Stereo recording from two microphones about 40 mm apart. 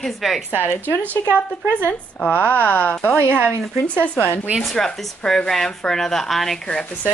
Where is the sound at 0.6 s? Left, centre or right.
Left.